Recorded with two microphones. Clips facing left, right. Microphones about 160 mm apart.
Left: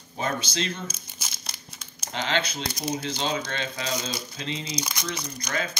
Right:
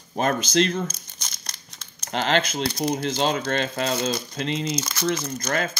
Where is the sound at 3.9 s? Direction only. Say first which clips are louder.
Right 6 dB; 60° right (ahead or behind).